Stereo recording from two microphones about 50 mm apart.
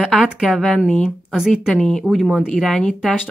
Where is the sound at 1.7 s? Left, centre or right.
Centre.